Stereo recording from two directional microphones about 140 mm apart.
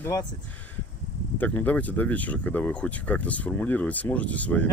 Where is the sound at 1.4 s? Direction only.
10° left (ahead or behind).